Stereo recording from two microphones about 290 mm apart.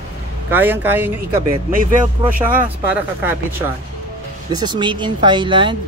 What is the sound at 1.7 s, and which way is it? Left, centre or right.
Speech, right.